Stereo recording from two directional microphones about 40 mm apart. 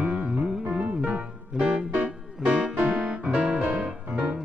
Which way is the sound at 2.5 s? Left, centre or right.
Right.